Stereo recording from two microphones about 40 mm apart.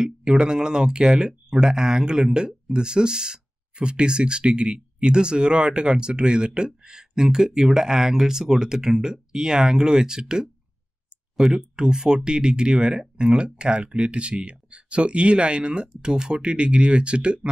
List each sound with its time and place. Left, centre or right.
0.0 s speech: centre